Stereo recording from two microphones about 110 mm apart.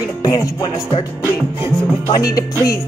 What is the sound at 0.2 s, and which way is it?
Music, 35° left (ahead or behind).